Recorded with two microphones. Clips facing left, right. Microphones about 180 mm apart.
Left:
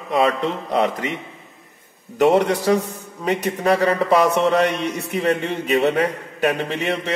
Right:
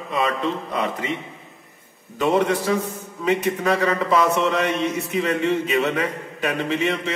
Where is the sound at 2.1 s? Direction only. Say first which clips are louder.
Left 5 dB; 75° left (ahead or behind).